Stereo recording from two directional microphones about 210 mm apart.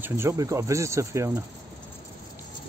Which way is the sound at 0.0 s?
10° right (ahead or behind).